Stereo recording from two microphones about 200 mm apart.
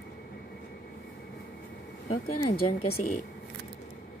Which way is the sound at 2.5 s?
45° left (ahead or behind).